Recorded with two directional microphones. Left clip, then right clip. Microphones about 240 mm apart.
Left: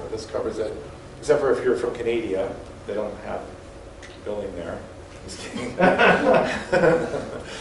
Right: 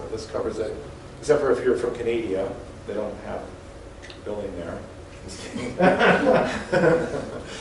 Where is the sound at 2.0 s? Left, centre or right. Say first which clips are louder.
Left 2 dB; centre.